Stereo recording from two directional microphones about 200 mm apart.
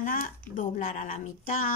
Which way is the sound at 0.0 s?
45° left (ahead or behind).